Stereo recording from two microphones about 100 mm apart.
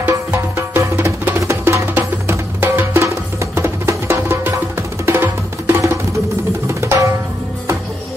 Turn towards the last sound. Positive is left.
turn(degrees=-25)  # may be behind; listen again after turning